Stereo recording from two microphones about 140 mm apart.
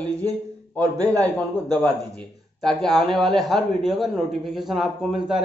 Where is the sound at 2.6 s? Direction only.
5° left (ahead or behind).